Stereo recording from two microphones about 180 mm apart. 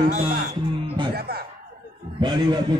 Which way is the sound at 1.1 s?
60° right (ahead or behind).